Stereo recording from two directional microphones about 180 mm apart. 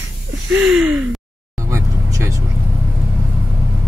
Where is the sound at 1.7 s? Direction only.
15° right (ahead or behind).